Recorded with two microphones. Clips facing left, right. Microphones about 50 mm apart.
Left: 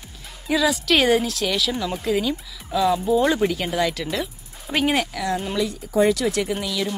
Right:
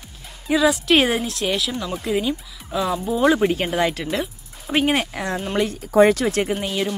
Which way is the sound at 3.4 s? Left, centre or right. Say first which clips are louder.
Right 2 dB; right.